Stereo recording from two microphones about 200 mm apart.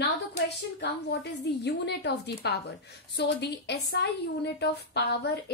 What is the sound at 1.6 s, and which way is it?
A woman's voice, 55° left (ahead or behind).